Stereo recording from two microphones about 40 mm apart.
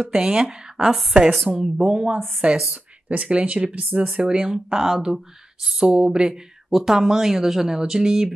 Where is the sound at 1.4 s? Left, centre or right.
Centre.